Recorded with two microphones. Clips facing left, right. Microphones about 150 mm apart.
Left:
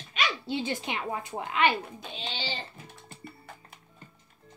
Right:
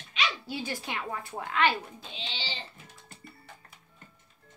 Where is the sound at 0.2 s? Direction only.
45° left (ahead or behind).